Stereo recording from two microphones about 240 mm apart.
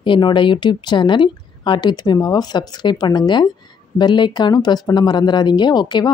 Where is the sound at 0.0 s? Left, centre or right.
Centre.